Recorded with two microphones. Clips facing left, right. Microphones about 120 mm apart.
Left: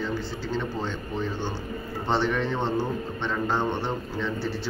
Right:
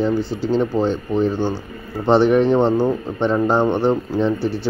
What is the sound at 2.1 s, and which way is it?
Speech, 70° right (ahead or behind).